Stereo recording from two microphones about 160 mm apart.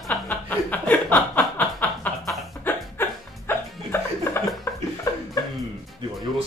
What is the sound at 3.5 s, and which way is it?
Music, 15° left (ahead or behind).